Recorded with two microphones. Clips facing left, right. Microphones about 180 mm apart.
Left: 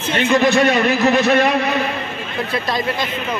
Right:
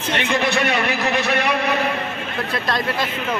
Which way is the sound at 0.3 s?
40° left (ahead or behind).